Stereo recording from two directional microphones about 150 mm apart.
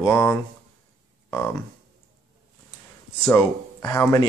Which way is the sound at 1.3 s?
15° left (ahead or behind).